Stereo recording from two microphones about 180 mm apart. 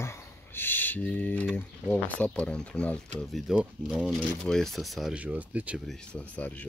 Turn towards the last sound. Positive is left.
turn(degrees=10)  # may be behind; listen again after turning